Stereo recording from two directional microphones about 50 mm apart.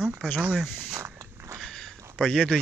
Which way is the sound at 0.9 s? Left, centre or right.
Right.